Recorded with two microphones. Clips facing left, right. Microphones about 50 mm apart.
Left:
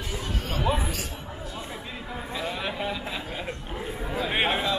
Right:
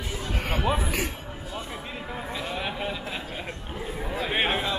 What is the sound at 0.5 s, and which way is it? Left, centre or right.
Speech, right.